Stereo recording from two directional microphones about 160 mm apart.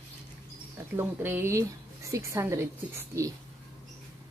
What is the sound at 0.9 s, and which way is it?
A woman's voice, 15° right (ahead or behind).